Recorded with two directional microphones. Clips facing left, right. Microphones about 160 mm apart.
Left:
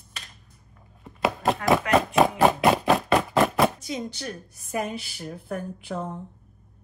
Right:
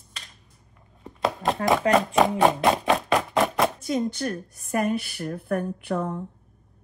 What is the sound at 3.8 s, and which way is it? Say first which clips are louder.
A woman's voice: right 7 dB; 50° right (ahead or behind).